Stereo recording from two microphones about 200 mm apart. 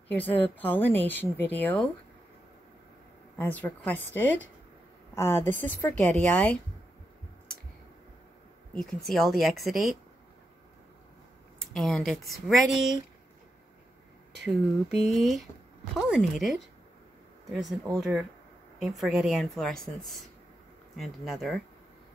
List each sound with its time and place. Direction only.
0.1 s speech: 10° left (ahead or behind)
3.3 s a woman's voice: 10° left (ahead or behind)
8.7 s speech: centre (ahead or behind)
11.6 s speech: centre (ahead or behind)
15.1 s speech: centre (ahead or behind)
20.9 s speech: centre (ahead or behind)